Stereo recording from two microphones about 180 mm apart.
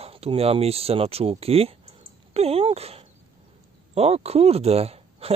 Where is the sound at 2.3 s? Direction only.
35° right (ahead or behind).